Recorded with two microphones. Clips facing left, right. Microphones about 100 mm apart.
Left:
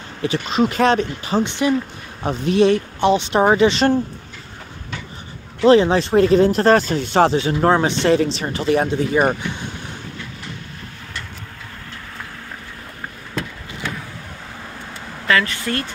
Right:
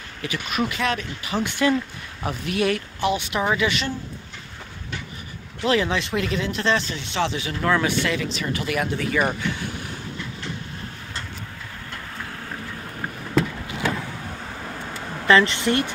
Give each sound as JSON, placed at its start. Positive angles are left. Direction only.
{"t": 0.2, "sound": "speech", "side_deg": 30}
{"t": 5.7, "sound": "speech", "side_deg": 35}
{"t": 15.2, "sound": "speech", "side_deg": -25}